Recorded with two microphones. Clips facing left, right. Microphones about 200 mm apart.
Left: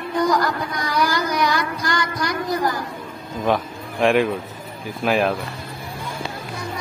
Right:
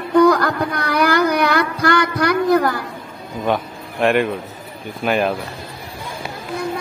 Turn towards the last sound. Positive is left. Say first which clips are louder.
# right 1 dB
turn(degrees=0)  # may be behind; listen again after turning